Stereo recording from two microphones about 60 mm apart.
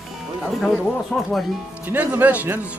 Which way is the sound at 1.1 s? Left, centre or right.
Centre.